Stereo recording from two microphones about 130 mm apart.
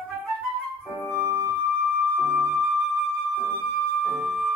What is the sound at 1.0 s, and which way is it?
Music, 20° right (ahead or behind).